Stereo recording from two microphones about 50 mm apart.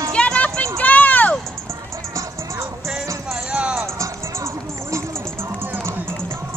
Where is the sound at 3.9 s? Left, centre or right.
Right.